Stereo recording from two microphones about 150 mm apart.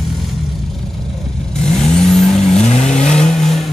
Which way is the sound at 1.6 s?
5° left (ahead or behind).